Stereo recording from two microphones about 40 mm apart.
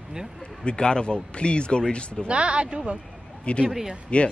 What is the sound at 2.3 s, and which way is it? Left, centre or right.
Speech, right.